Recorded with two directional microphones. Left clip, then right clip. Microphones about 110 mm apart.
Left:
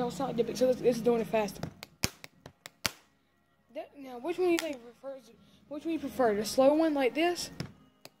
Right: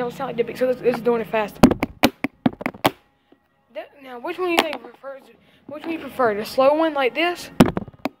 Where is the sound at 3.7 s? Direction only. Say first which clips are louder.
Right 8 dB; 25° left (ahead or behind).